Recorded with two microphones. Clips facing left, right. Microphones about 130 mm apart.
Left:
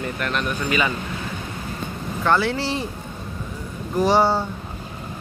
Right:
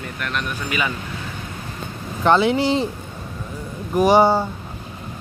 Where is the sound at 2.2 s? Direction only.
20° right (ahead or behind).